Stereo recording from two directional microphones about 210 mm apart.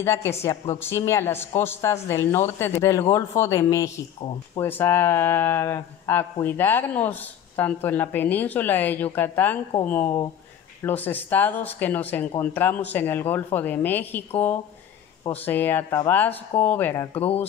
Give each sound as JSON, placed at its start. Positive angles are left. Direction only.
{"t": 0.0, "sound": "speech", "side_deg": 10}
{"t": 15.4, "sound": "speech", "side_deg": 10}
{"t": 17.1, "sound": "speech", "side_deg": 30}